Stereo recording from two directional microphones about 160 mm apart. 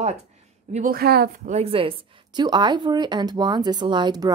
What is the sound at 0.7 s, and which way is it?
Speech, 50° right (ahead or behind).